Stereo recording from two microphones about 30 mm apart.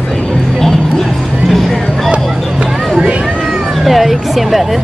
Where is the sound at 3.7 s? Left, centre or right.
Centre.